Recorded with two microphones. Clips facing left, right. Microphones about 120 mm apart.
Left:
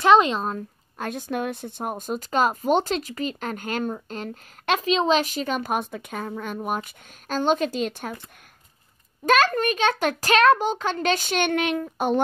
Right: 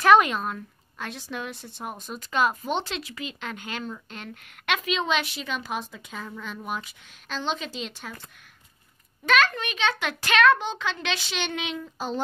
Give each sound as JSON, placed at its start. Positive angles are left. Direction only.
{"t": 0.0, "sound": "a woman's voice", "side_deg": 25}
{"t": 9.2, "sound": "a woman's voice", "side_deg": 40}